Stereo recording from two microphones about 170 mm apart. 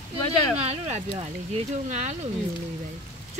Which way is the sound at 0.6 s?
40° right (ahead or behind).